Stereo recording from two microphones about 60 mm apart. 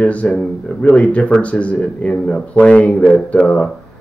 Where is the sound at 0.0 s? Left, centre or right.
Left.